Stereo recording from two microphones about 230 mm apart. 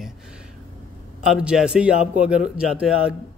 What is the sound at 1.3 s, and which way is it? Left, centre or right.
A man's voice, centre.